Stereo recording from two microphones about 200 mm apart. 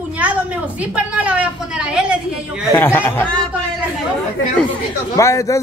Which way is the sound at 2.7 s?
10° left (ahead or behind).